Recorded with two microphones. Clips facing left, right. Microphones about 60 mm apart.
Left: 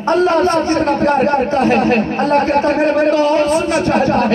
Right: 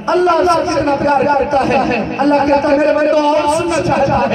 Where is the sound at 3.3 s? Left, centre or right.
Centre.